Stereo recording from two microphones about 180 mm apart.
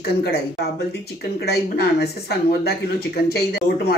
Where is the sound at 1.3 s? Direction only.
60° left (ahead or behind).